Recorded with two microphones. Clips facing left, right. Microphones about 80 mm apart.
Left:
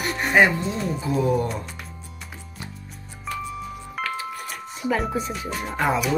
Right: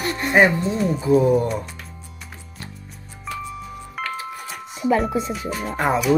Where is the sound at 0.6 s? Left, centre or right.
Centre.